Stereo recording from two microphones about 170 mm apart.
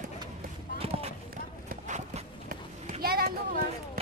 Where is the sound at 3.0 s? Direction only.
60° right (ahead or behind).